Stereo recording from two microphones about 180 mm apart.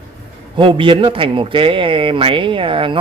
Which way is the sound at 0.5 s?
25° right (ahead or behind).